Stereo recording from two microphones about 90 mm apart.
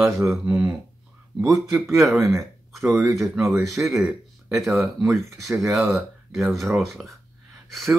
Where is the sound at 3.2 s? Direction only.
Centre (ahead or behind).